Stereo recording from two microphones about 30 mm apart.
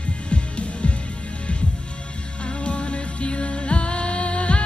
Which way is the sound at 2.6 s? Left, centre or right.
Left.